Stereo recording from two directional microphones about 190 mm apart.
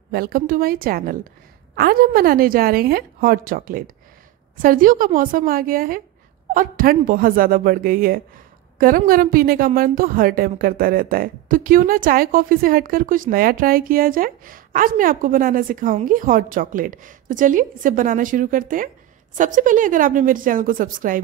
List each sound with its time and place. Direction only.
0.1 s speech: 50° right (ahead or behind)